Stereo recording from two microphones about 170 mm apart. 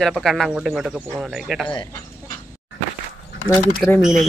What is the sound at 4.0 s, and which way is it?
Speech, centre (ahead or behind).